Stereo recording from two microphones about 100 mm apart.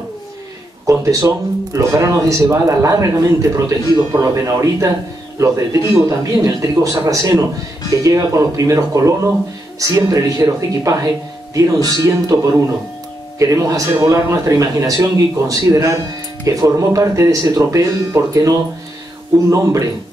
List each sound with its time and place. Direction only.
0.8 s speech: 30° right (ahead or behind)
13.4 s speech: 35° right (ahead or behind)